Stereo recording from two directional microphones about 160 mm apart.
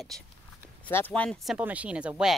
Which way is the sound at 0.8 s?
10° left (ahead or behind).